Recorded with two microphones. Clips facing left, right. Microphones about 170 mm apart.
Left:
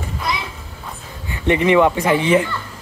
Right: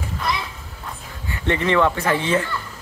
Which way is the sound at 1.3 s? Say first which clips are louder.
Left 5 dB; 15° left (ahead or behind).